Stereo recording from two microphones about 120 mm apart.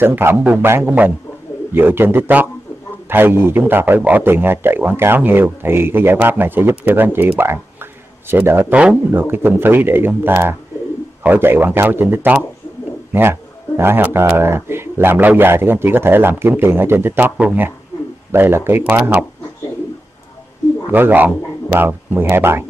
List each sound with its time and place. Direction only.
0.0 s a man's voice: 20° right (ahead or behind)
20.9 s a man's voice: 15° right (ahead or behind)